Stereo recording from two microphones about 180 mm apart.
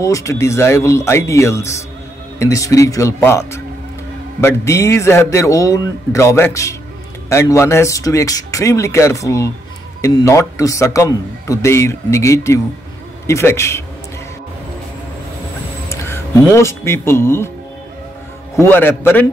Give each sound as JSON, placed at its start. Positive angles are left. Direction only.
{"t": 0.0, "sound": "a man's voice", "side_deg": 15}
{"t": 15.9, "sound": "speech", "side_deg": 15}
{"t": 18.6, "sound": "a man's voice", "side_deg": 10}